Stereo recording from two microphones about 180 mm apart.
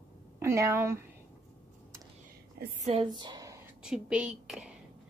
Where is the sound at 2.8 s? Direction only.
30° right (ahead or behind).